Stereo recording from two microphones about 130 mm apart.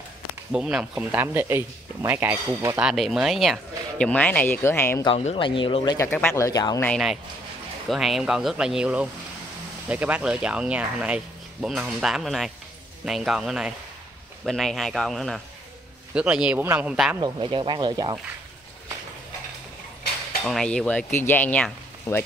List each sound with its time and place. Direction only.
0.5 s speech: 5° right (ahead or behind); by 2.8 s 20° right (ahead or behind)
2.8 s speech: 5° right (ahead or behind); by 5.0 s 20° left (ahead or behind)
5.2 s speech: 45° left (ahead or behind)
6.3 s speech: 25° left (ahead or behind)
7.9 s speech: centre (ahead or behind)
17.2 s speech: 35° right (ahead or behind)
20.4 s speech: 5° left (ahead or behind)